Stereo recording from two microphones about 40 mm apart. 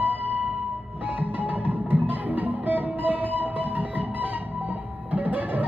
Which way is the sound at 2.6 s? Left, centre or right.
Right.